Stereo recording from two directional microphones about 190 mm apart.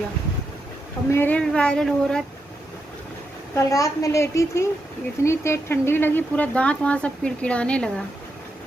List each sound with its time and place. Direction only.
1.1 s speech: 10° left (ahead or behind)
3.5 s speech: 15° left (ahead or behind)